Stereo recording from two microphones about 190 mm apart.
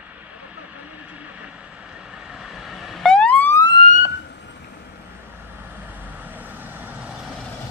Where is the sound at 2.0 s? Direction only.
5° right (ahead or behind).